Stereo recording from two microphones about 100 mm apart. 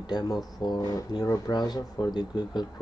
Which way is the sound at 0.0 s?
45° left (ahead or behind).